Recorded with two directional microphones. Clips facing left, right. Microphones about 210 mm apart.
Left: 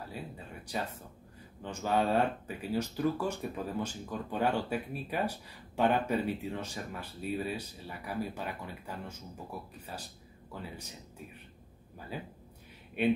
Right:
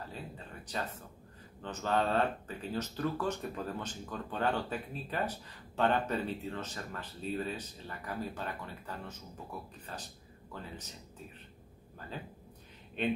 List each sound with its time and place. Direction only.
1.6 s speech: 10° left (ahead or behind)
12.1 s speech: 10° left (ahead or behind)